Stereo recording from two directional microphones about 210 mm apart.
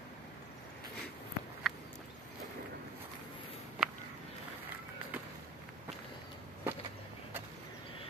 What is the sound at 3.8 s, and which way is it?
Walk, 5° right (ahead or behind).